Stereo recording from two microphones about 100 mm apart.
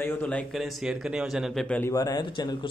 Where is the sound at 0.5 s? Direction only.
Centre (ahead or behind).